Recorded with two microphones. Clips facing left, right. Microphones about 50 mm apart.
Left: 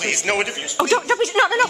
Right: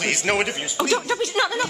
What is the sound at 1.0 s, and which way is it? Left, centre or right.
Speech, left.